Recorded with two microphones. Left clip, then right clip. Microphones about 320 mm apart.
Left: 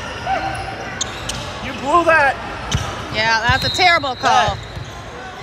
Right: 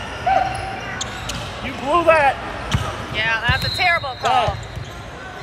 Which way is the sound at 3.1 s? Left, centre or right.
Centre.